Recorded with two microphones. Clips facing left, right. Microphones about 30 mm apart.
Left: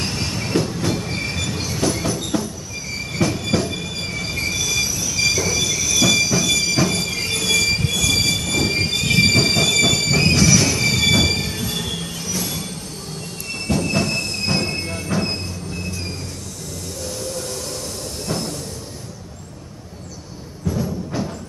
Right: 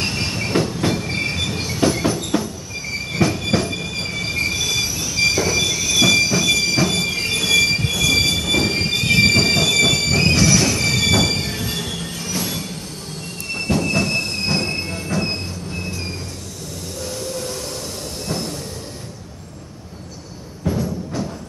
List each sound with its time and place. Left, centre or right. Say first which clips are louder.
0.0 s train: right 2 dB; centre
3.2 s train: right 1 dB; centre
5.0 s train: right 4 dB; right; by 11.3 s centre
11.3 s train: even; centre
13.7 s train: right 1 dB; centre
13.9 s train wheels squealing: right 1 dB; centre
15.0 s train: even; centre
17.4 s train: right 1 dB; centre
20.7 s a sound: right 2 dB; right